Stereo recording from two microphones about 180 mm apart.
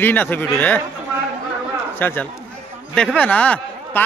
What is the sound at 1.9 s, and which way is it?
A man's voice, 10° left (ahead or behind).